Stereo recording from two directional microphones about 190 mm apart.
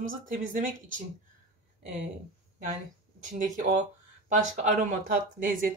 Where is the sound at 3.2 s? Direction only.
45° right (ahead or behind).